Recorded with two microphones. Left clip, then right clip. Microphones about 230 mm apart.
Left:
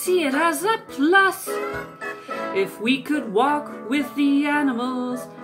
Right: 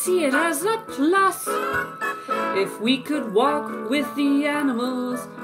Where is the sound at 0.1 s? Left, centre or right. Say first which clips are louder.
Even; centre.